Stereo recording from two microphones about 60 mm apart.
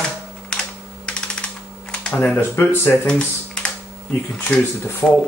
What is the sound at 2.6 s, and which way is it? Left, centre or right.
Speech, left.